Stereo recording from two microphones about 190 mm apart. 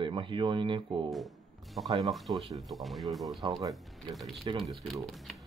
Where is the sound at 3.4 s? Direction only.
20° right (ahead or behind).